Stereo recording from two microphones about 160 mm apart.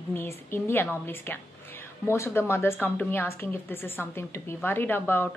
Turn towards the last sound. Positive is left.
turn(degrees=15)  # may be behind; listen again after turning